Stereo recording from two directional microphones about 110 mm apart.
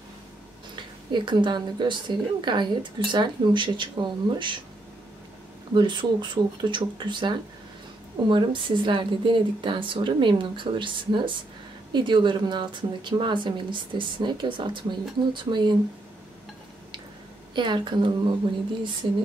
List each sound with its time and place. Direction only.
0.7 s a woman's voice: 45° right (ahead or behind)
5.8 s a woman's voice: 45° right (ahead or behind)
17.6 s a woman's voice: 45° right (ahead or behind)